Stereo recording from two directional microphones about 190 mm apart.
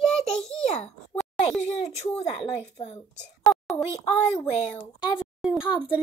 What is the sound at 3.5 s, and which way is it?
A child's voice, centre (ahead or behind).